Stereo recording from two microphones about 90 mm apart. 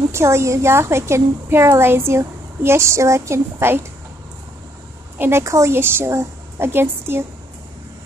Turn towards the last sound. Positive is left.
turn(degrees=-25)  # may be behind; listen again after turning